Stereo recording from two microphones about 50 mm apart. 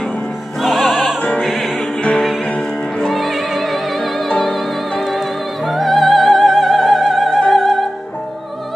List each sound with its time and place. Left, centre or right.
0.6 s music: centre
2.0 s music: left
3.1 s music: centre